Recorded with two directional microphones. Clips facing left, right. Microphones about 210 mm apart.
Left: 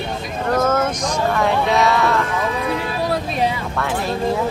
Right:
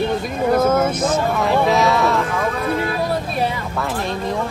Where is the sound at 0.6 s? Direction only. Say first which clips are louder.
Right 2 dB; 10° right (ahead or behind).